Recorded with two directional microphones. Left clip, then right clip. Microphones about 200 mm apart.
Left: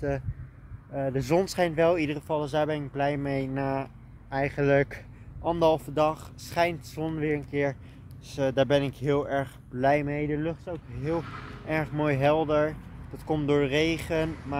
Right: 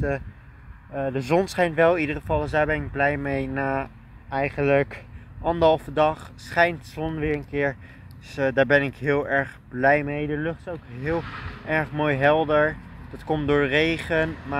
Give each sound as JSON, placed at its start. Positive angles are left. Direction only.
{"t": 0.9, "sound": "speech", "side_deg": 10}
{"t": 11.2, "sound": "speech", "side_deg": 60}
{"t": 11.6, "sound": "speech", "side_deg": 0}